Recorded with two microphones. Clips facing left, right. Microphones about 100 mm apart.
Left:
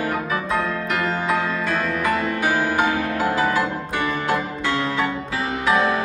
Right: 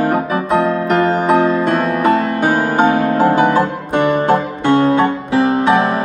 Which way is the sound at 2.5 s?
25° right (ahead or behind).